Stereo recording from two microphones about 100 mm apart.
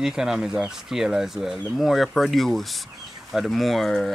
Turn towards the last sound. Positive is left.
turn(degrees=0)  # may be behind; listen again after turning